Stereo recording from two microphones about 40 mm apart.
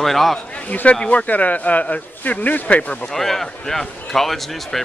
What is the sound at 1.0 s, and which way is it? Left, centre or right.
Speech, left.